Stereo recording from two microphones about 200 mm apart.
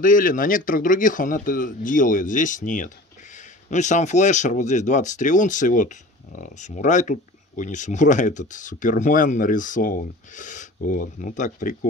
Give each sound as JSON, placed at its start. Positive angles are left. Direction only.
{"t": 0.0, "sound": "speech", "side_deg": 40}